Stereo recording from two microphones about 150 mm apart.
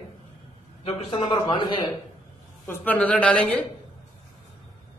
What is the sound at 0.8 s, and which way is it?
Speech, 40° left (ahead or behind).